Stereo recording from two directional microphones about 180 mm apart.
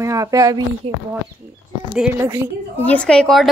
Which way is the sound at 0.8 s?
30° right (ahead or behind).